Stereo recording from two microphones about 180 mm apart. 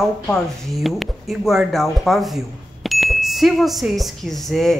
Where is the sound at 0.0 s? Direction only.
Centre (ahead or behind).